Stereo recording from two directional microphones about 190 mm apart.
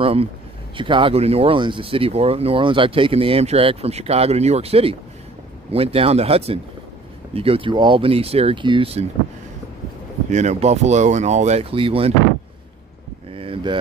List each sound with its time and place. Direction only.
0.0 s speech: 30° right (ahead or behind)
10.3 s speech: 35° right (ahead or behind)
13.3 s a sound: 30° right (ahead or behind)